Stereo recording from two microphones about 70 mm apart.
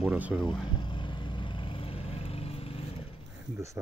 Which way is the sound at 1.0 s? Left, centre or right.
Left.